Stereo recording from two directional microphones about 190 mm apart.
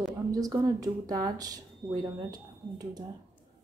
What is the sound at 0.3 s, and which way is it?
A woman's voice, 20° right (ahead or behind).